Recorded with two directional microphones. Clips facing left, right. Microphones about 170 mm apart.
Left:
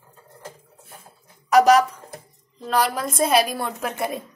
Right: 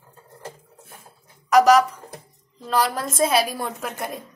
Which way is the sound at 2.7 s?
5° left (ahead or behind).